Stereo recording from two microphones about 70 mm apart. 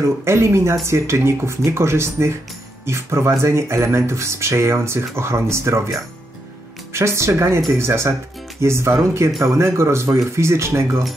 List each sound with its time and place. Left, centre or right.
0.0 s speech: right